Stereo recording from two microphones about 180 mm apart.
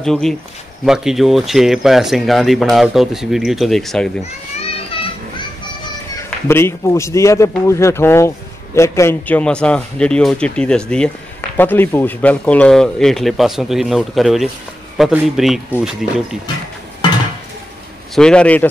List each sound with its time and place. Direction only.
0.0 s speech: centre (ahead or behind)
4.2 s children playing: 35° left (ahead or behind)
6.1 s a man's voice: 15° left (ahead or behind); by 16.3 s 5° right (ahead or behind)
18.1 s speech: 5° left (ahead or behind)